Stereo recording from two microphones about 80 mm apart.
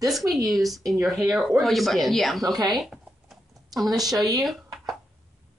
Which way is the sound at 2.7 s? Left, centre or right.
Centre.